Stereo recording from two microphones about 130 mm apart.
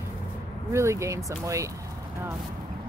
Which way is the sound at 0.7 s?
20° right (ahead or behind).